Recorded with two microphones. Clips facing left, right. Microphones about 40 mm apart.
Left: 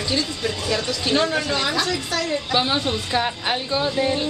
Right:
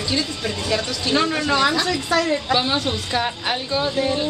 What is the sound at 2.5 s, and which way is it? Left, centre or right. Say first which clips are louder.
Speech: right 1 dB; centre.